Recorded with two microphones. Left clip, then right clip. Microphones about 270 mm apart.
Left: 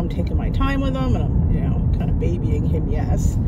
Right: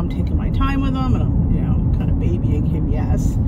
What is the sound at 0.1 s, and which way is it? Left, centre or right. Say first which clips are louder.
Vehicle: right 1 dB; centre.